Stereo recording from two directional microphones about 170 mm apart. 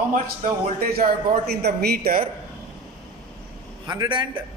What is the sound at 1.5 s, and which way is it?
Speech, 70° right (ahead or behind).